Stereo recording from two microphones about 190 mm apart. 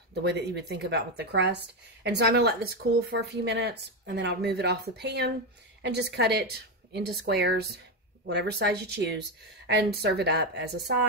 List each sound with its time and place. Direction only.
0.1 s a woman's voice: 60° right (ahead or behind)